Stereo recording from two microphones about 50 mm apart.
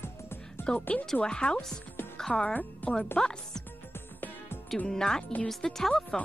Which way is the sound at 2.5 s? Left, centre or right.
Left.